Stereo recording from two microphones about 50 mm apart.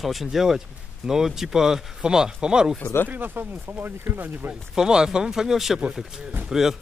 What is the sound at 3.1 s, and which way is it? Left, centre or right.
Speech, right.